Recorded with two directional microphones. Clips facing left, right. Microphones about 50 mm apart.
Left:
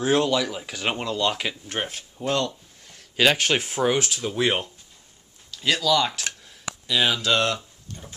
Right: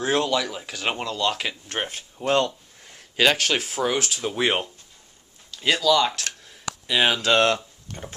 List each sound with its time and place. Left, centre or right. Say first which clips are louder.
0.0 s speech: left 1 dB; centre
1.5 s speech: even; centre
2.2 s speech: right 3 dB; right
3.3 s speech: left 1 dB; centre
3.9 s speech: left 1 dB; centre
4.2 s speech: even; centre
5.5 s a sound: right 1 dB; centre
5.8 s speech: right 2 dB; centre
6.9 s speech: right 2 dB; right
7.2 s speech: right 3 dB; right